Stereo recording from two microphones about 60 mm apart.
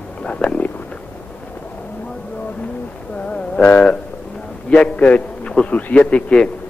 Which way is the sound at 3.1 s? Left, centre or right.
Left.